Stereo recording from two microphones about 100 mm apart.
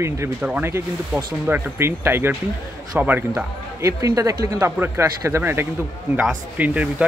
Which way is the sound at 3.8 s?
35° right (ahead or behind).